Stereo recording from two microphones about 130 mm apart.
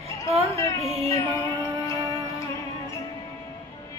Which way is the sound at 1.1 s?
25° left (ahead or behind).